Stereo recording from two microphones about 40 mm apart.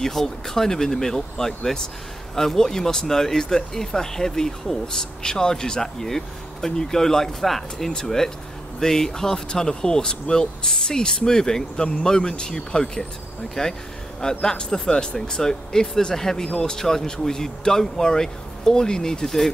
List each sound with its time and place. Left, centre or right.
0.0 s speech: centre